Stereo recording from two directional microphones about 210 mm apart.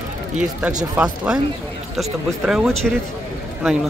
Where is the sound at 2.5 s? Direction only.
Centre (ahead or behind).